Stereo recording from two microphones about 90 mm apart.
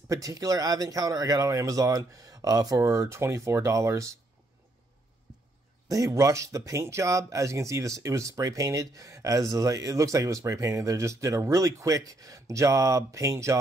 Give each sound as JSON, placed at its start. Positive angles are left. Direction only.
{"t": 0.1, "sound": "speech", "side_deg": -40}
{"t": 5.9, "sound": "speech", "side_deg": -40}